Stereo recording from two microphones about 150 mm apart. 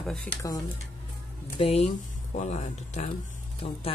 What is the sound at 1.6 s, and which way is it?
Speech, 45° left (ahead or behind).